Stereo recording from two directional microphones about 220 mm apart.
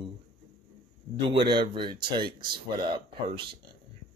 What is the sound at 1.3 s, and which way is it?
Speech, 20° right (ahead or behind).